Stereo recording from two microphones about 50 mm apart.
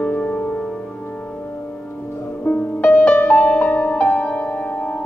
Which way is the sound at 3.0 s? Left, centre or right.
Left.